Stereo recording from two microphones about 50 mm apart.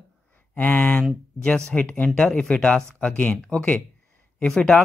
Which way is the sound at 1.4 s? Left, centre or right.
Left.